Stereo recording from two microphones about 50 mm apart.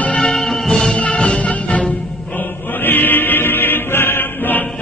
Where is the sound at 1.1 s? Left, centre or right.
Centre.